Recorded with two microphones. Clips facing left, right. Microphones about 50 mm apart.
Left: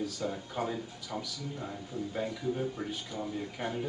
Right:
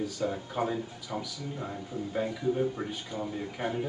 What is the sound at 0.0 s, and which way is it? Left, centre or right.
Speech, centre.